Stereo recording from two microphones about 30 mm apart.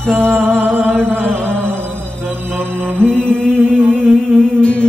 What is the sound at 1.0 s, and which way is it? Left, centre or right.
Speech, left.